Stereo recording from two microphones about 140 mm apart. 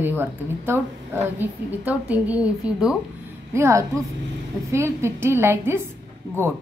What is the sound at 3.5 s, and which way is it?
A woman's voice, 20° right (ahead or behind).